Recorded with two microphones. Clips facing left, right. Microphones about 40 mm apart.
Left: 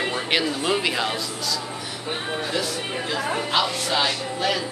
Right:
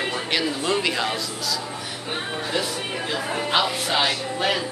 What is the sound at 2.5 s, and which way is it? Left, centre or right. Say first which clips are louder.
Music: even; centre.